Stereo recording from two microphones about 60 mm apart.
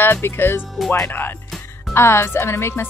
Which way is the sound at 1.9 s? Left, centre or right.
Left.